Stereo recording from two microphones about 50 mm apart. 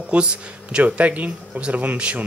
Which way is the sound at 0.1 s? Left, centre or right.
Right.